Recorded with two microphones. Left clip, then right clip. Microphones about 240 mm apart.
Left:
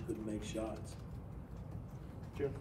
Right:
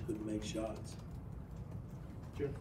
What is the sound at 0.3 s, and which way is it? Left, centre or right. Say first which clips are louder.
Speech: right 1 dB; centre.